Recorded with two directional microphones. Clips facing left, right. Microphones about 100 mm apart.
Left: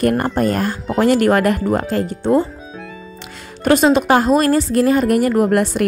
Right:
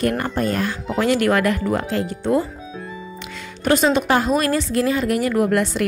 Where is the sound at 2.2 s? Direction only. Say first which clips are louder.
Left 4 dB; 30° left (ahead or behind).